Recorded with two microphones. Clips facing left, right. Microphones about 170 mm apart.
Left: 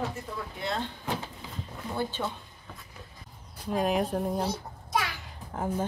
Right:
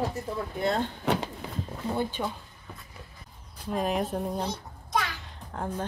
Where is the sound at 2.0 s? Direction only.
15° right (ahead or behind).